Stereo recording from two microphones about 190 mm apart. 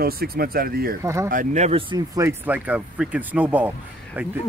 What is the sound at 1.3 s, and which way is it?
Speech, 40° right (ahead or behind).